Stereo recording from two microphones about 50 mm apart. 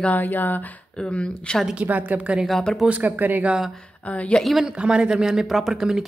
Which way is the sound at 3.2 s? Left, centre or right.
Right.